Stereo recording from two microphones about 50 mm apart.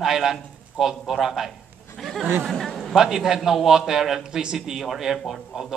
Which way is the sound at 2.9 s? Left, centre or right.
Centre.